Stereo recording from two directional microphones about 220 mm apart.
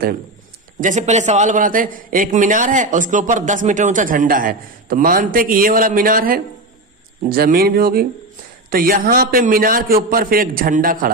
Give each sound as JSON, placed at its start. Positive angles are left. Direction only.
{"t": 0.7, "sound": "a man's voice", "side_deg": -35}